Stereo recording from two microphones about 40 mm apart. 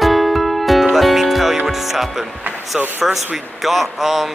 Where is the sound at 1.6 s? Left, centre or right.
Centre.